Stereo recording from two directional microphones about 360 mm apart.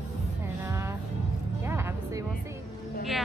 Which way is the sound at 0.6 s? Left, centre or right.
Centre.